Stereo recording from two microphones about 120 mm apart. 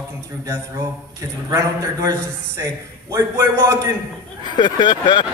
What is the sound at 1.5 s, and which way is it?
A man's voice, 30° right (ahead or behind).